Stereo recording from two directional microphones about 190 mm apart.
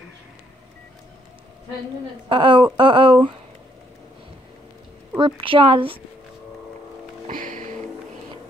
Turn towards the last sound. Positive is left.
turn(degrees=-45)  # may be behind; listen again after turning